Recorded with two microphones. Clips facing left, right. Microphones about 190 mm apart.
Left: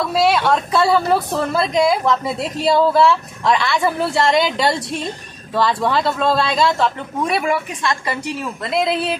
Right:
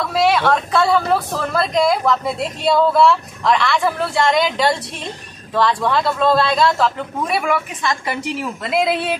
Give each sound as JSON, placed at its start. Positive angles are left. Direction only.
{"t": 0.1, "sound": "a woman's voice", "side_deg": 0}
{"t": 8.6, "sound": "a woman's voice", "side_deg": -5}